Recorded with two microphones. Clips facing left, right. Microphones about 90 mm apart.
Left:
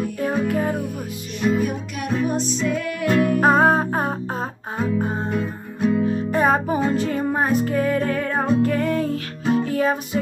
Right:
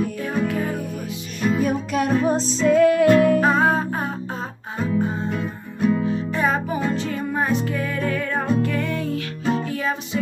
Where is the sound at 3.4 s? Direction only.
40° left (ahead or behind).